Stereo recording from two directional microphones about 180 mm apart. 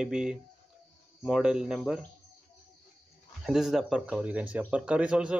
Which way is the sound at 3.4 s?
Centre (ahead or behind).